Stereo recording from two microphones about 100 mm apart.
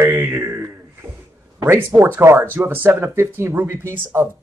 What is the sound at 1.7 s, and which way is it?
Speech, 25° right (ahead or behind).